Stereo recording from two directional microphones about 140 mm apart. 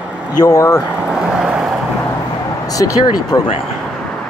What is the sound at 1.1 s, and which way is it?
Vehicle, 5° right (ahead or behind).